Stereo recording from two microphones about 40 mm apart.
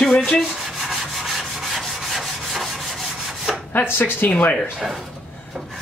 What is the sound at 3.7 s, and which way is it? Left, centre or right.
Speech, left.